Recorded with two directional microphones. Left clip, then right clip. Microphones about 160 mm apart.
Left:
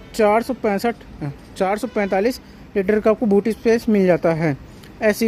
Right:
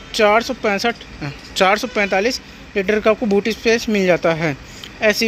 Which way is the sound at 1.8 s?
25° left (ahead or behind).